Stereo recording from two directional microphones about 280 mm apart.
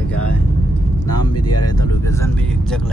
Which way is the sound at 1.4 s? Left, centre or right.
Left.